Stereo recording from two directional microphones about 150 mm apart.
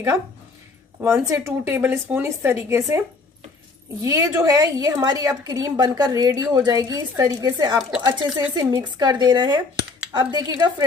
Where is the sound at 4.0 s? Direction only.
20° right (ahead or behind).